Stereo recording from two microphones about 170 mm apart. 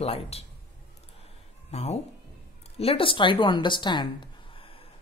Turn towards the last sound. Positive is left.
turn(degrees=30)  # may be behind; listen again after turning